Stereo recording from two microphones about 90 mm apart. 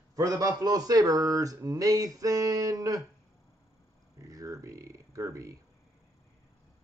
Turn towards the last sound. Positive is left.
turn(degrees=-35)  # may be behind; listen again after turning